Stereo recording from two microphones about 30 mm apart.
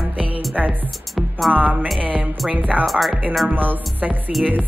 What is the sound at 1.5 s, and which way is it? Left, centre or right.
Speech, right.